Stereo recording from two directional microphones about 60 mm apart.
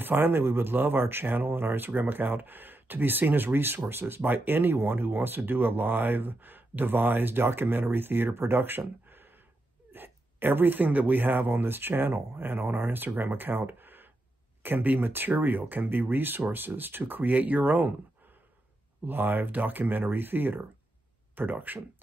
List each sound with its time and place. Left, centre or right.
0.0 s speech: right
19.0 s speech: right